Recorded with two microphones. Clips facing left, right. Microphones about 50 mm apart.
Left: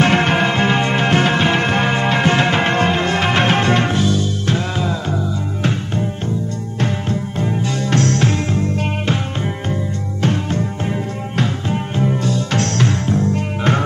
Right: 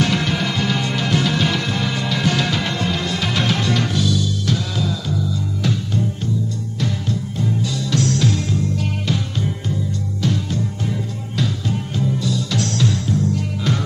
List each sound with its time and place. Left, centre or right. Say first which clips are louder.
0.0 s music: left 6 dB; left